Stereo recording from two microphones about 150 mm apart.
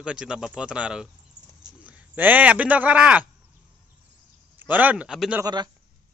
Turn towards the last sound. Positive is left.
turn(degrees=-30)  # may be behind; listen again after turning